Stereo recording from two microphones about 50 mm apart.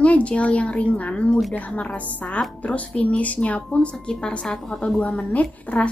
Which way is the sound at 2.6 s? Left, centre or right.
Left.